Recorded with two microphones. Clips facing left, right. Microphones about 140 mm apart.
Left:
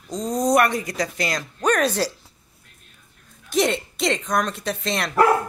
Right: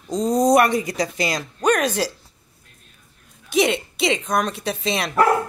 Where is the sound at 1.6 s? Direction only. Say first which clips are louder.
Right 1 dB; centre (ahead or behind).